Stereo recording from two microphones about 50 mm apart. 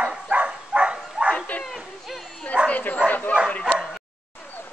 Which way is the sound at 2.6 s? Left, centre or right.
Left.